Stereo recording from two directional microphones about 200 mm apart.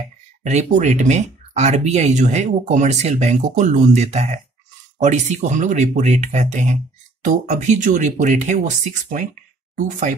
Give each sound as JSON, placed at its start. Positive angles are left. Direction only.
{"t": 0.4, "sound": "speech", "side_deg": -35}